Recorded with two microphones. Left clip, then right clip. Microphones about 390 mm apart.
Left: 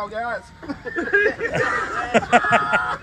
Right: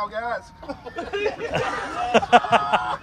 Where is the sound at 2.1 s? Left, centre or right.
Centre.